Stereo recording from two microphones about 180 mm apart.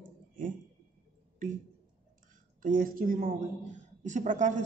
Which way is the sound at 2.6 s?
50° right (ahead or behind).